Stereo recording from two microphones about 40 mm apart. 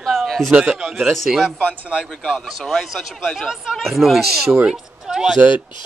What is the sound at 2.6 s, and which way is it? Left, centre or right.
A woman's voice, centre.